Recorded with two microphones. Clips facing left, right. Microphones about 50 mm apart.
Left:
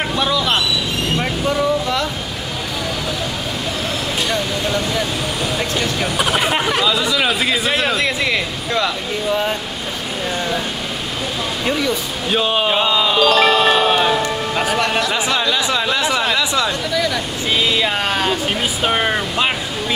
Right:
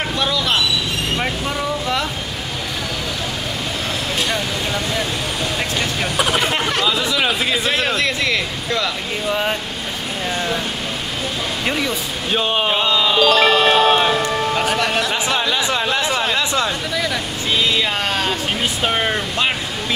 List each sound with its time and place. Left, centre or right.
0.2 s vehicle: centre
4.3 s a sound: centre
5.8 s speech: centre
6.9 s speech: centre
7.7 s speech: centre
9.3 s speech: centre
11.6 s speech: centre
12.7 s music: centre
14.7 s speech: centre
16.9 s a sound: centre
17.6 s speech: centre
18.9 s vehicle: centre